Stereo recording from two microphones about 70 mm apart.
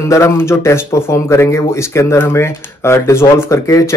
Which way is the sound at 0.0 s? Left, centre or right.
Left.